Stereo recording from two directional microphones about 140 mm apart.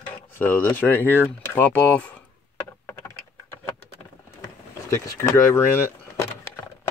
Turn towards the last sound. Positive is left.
turn(degrees=20)  # may be behind; listen again after turning